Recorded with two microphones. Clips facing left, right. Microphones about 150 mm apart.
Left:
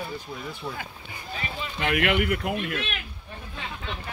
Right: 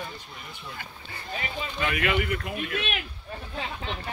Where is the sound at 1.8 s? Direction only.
65° left (ahead or behind).